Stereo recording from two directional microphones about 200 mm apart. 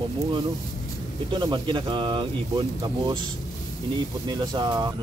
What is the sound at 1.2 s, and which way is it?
Speech, 25° right (ahead or behind).